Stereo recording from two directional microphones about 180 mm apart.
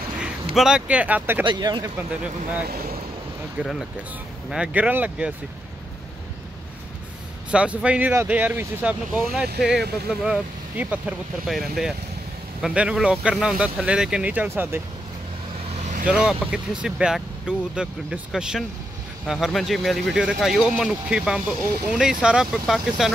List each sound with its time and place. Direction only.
0.2 s speech: 5° right (ahead or behind)
1.4 s speech: 25° right (ahead or behind)
3.6 s speech: 5° right (ahead or behind)
7.5 s speech: 5° right (ahead or behind)
15.8 s vehicle: 45° right (ahead or behind)
16.1 s speech: 5° right (ahead or behind)